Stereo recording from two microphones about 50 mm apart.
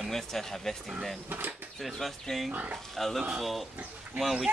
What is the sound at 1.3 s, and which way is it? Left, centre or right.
Speech, right.